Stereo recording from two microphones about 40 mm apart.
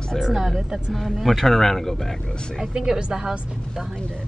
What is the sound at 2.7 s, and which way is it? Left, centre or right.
Speech, centre.